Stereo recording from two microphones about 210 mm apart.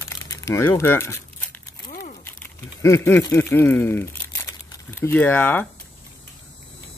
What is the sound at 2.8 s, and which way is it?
Crumpling, 15° left (ahead or behind).